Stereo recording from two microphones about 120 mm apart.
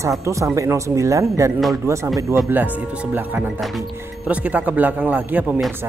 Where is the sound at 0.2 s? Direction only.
25° right (ahead or behind).